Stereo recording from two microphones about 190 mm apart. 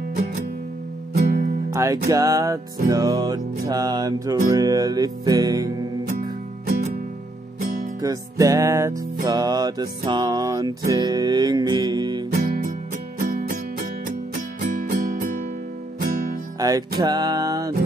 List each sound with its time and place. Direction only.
1.1 s music: 50° right (ahead or behind)
1.7 s music: 20° right (ahead or behind)
7.6 s music: 45° right (ahead or behind)
8.0 s music: 20° right (ahead or behind)
12.4 s music: 45° right (ahead or behind)
16.5 s music: 20° right (ahead or behind)